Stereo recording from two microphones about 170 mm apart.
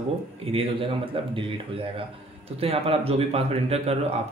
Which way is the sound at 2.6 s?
35° right (ahead or behind).